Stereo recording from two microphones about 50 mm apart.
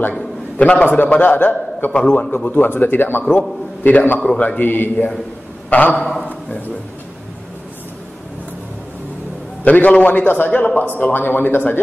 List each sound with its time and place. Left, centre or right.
0.6 s a man's voice: left
0.8 s a man's voice: left
1.9 s a man's voice: centre
2.1 s speech: left
9.7 s speech: left